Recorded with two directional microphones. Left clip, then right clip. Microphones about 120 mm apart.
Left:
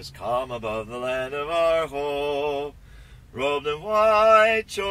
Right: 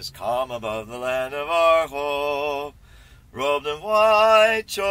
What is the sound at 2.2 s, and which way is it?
Mantra, 50° right (ahead or behind).